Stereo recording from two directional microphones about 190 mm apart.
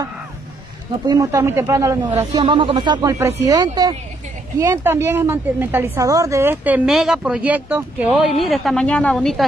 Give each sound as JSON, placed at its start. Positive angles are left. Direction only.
{"t": 1.0, "sound": "a woman's voice", "side_deg": -20}